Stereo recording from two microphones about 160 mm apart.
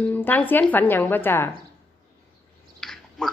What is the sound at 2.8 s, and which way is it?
Chewing, 5° left (ahead or behind).